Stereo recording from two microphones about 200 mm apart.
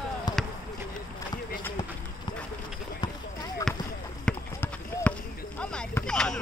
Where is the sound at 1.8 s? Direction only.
20° left (ahead or behind).